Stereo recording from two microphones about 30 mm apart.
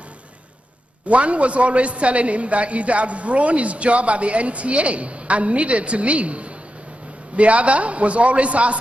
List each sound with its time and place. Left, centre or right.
1.0 s a man's voice: right